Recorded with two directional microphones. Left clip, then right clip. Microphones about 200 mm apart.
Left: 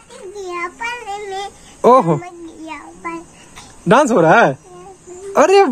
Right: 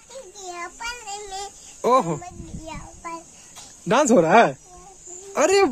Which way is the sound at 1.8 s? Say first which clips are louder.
Left 9 dB; centre (ahead or behind).